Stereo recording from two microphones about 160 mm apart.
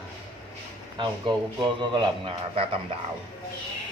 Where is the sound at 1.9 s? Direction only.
35° right (ahead or behind).